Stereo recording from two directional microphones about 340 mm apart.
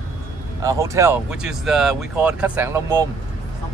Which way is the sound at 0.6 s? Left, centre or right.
Centre.